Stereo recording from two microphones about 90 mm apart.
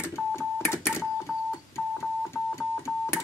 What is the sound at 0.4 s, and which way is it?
Telephone dialing, 30° left (ahead or behind).